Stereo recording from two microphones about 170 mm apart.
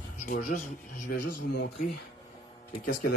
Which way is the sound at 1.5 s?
70° left (ahead or behind).